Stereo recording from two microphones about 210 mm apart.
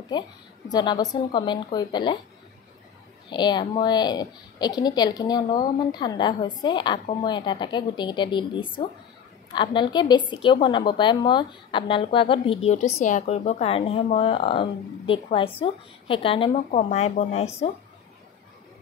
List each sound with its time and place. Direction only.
0.1 s a woman's voice: 20° left (ahead or behind)
3.3 s a woman's voice: 20° left (ahead or behind)